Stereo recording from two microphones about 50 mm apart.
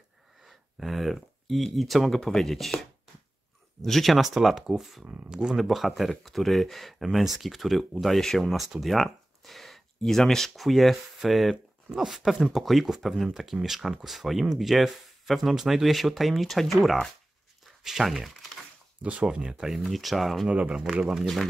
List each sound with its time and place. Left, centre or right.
0.4 s speech: centre
5.0 s speech: right
5.3 s speech: centre
5.6 s speech: centre
19.2 s speech: centre
19.8 s speech: centre
20.4 s speech: right
20.9 s speech: centre